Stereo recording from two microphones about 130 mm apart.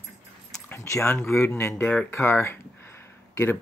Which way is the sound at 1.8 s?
10° left (ahead or behind).